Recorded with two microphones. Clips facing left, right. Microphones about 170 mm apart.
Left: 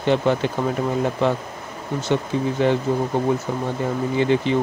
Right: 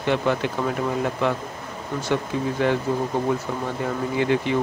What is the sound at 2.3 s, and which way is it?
Speech, 30° left (ahead or behind).